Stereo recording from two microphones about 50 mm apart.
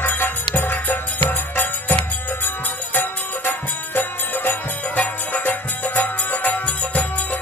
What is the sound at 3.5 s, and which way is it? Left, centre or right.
Music, left.